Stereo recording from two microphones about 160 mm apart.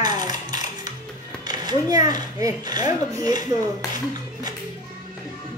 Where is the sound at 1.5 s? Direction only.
25° right (ahead or behind).